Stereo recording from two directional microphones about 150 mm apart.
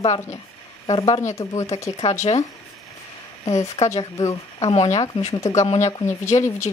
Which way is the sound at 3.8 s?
50° left (ahead or behind).